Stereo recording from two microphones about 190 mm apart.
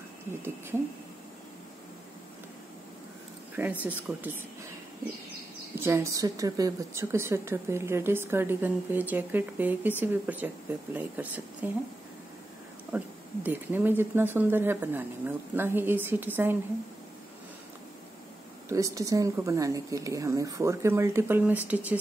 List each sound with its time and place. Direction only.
3.5 s a woman's voice: 10° right (ahead or behind)
5.8 s a woman's voice: 15° right (ahead or behind)
12.9 s a woman's voice: 10° right (ahead or behind)
18.7 s a woman's voice: 15° right (ahead or behind)